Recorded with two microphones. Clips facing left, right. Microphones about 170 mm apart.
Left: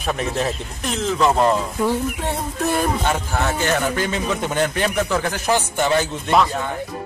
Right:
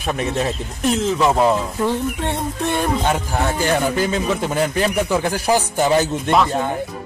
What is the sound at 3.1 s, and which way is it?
A man's voice, 15° right (ahead or behind).